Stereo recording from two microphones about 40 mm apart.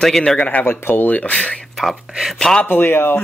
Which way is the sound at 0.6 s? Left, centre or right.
Left.